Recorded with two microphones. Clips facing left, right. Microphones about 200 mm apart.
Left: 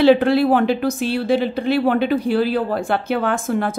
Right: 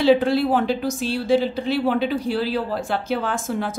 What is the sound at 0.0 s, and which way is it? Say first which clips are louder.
A woman's voice: left 4 dB; 65° left (ahead or behind).